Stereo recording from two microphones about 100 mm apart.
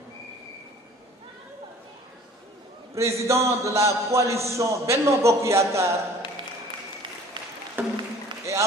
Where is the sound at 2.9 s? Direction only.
30° right (ahead or behind).